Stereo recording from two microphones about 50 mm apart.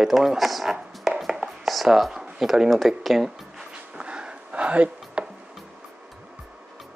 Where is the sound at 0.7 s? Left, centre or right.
Centre.